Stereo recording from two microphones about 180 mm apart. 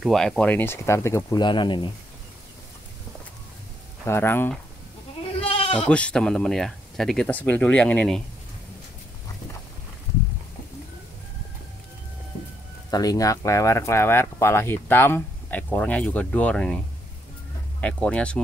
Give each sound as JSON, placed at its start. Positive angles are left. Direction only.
{"t": 0.0, "sound": "speech", "side_deg": 0}
{"t": 4.0, "sound": "speech", "side_deg": 10}
{"t": 5.4, "sound": "bleat", "side_deg": 30}
{"t": 5.9, "sound": "speech", "side_deg": 5}
{"t": 12.9, "sound": "speech", "side_deg": 20}